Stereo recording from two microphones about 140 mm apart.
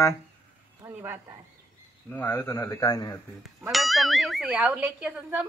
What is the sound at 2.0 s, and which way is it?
A man's voice, 15° left (ahead or behind).